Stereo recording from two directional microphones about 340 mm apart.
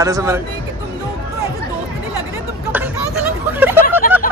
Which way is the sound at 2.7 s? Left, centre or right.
Centre.